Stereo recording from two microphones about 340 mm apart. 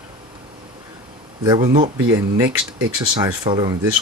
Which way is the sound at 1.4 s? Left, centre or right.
Centre.